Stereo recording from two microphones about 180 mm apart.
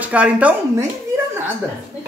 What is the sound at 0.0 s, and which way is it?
Speech, 5° right (ahead or behind).